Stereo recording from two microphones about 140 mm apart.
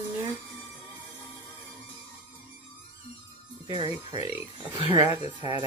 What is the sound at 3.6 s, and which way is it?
Speech, 35° right (ahead or behind).